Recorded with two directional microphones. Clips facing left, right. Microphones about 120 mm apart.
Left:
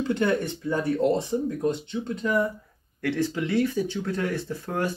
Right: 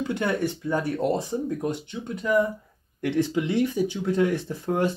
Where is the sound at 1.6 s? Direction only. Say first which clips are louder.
Left 3 dB; 15° right (ahead or behind).